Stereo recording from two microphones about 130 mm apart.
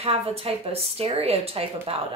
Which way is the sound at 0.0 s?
50° right (ahead or behind).